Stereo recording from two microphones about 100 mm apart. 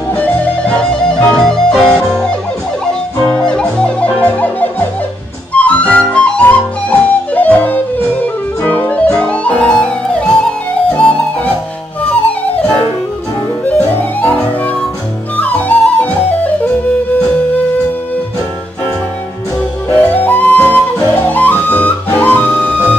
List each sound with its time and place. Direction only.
0.1 s music: 15° left (ahead or behind)
1.3 s music: 5° left (ahead or behind)
5.6 s flute: 15° left (ahead or behind)
8.6 s music: 15° left (ahead or behind)
13.7 s music: 15° left (ahead or behind)
15.3 s music: 15° left (ahead or behind)
20.0 s music: 15° left (ahead or behind)